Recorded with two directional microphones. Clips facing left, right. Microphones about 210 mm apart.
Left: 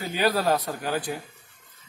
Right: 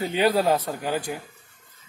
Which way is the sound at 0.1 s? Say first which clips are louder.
Right 2 dB; 20° right (ahead or behind).